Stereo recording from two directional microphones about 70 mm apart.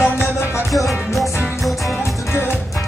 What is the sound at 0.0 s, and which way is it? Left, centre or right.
Music, left.